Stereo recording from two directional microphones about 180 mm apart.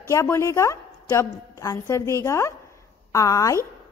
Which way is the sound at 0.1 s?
15° left (ahead or behind).